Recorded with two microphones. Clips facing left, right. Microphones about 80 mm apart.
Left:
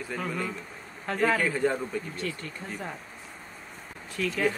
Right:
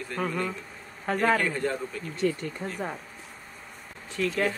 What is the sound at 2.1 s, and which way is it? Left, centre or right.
Speech, right.